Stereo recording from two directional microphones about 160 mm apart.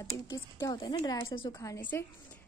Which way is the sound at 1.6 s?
15° left (ahead or behind).